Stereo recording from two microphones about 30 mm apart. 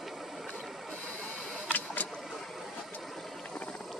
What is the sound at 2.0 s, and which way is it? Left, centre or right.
Vehicle, left.